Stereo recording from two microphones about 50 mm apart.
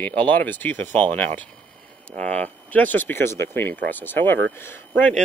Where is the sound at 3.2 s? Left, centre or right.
Left.